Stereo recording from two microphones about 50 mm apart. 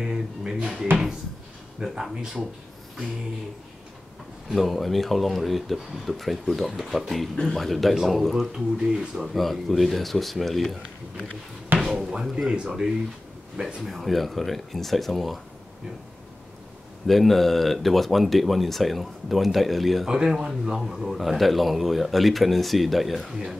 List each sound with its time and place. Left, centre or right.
0.4 s speech: centre
4.5 s speech: centre
9.3 s speech: centre
11.8 s speech: centre
13.8 s speech: centre
17.0 s speech: centre
20.1 s speech: centre